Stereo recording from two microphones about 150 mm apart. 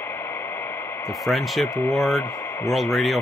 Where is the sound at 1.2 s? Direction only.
Centre (ahead or behind).